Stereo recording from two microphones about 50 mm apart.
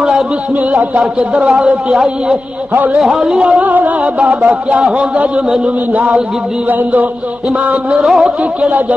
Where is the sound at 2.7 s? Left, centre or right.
Right.